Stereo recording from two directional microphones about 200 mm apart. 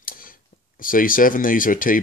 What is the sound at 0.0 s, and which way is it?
Speech, 45° left (ahead or behind).